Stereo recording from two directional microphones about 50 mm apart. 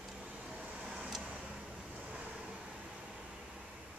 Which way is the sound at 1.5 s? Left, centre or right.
Centre.